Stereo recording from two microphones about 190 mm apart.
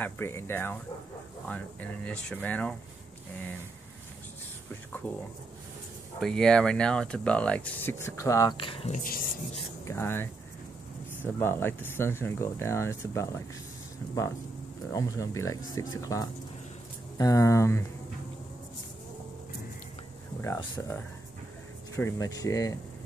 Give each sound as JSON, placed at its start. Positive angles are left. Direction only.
{"t": 0.0, "sound": "speech", "side_deg": 15}
{"t": 6.1, "sound": "speech", "side_deg": 5}
{"t": 9.8, "sound": "speech", "side_deg": 10}
{"t": 11.3, "sound": "speech", "side_deg": 10}
{"t": 14.9, "sound": "speech", "side_deg": 15}
{"t": 20.3, "sound": "speech", "side_deg": 15}